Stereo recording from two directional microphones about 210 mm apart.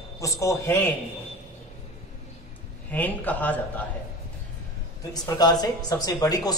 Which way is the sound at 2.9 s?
10° left (ahead or behind).